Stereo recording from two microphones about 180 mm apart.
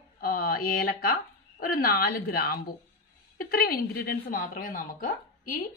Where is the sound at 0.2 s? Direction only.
55° left (ahead or behind).